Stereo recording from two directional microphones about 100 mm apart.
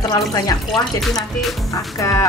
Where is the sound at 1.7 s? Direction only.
35° left (ahead or behind).